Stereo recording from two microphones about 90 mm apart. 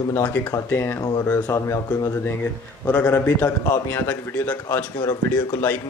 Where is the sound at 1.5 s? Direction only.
35° left (ahead or behind).